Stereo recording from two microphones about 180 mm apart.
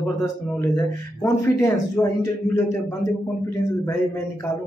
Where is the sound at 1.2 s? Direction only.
15° left (ahead or behind).